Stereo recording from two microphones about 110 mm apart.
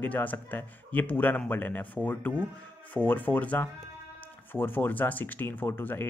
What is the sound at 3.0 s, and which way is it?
Speech, 15° left (ahead or behind).